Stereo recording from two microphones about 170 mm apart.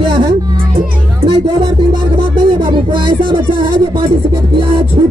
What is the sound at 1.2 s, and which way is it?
Music, 25° right (ahead or behind).